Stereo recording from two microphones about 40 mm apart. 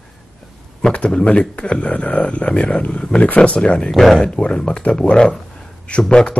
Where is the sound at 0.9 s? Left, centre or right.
Left.